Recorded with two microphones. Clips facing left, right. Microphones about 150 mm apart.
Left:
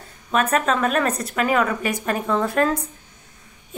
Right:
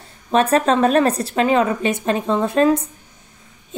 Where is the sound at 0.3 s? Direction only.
30° right (ahead or behind).